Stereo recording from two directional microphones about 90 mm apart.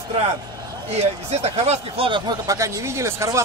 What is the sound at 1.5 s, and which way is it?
Speech, 90° right.